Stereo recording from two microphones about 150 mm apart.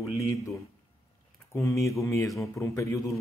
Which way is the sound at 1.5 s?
20° left (ahead or behind).